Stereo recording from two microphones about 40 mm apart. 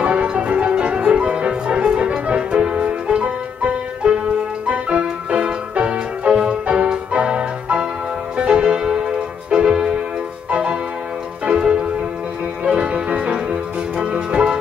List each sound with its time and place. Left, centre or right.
0.0 s music: right